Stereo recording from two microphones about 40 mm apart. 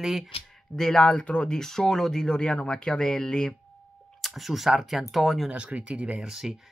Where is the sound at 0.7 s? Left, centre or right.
Centre.